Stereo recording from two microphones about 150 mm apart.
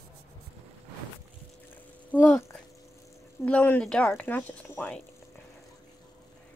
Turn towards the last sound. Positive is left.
turn(degrees=10)  # may be behind; listen again after turning